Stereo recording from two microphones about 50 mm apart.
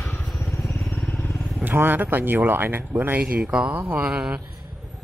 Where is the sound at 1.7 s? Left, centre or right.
Right.